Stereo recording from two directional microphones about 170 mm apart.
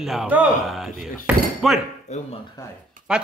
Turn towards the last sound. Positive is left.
turn(degrees=-5)  # may be behind; listen again after turning